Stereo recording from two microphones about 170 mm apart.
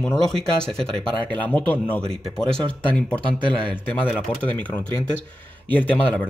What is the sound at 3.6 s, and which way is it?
Speech, 10° left (ahead or behind).